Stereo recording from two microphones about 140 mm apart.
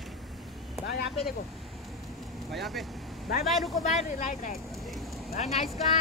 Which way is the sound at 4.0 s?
65° left (ahead or behind).